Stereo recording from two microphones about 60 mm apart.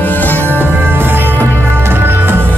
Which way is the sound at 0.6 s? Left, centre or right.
Right.